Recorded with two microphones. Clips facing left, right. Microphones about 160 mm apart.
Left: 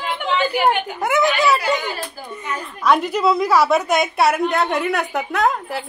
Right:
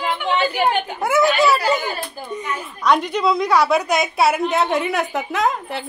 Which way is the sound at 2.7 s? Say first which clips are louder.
Left 1 dB; 5° left (ahead or behind).